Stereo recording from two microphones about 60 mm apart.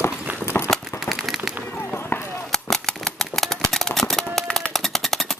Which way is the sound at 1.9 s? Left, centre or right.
Left.